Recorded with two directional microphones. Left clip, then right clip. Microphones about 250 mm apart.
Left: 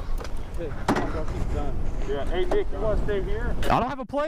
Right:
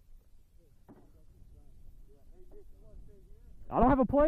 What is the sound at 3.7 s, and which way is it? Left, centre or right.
Speech, centre.